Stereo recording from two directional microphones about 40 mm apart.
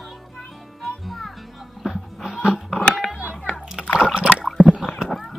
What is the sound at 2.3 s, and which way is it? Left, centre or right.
Music, right.